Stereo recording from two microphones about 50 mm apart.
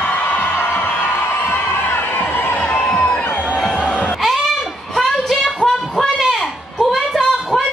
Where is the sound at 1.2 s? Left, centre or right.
Left.